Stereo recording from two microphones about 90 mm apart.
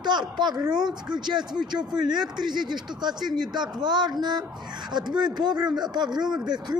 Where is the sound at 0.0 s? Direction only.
55° right (ahead or behind).